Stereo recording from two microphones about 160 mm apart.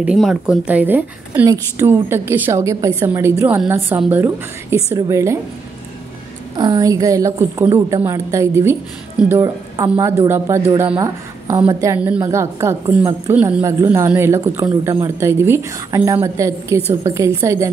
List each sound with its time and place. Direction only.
0.0 s a man's voice: 5° right (ahead or behind)
6.5 s a woman's voice: 30° right (ahead or behind)